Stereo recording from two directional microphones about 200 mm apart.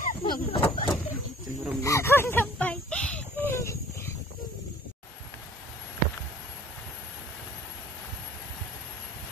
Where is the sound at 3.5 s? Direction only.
15° left (ahead or behind).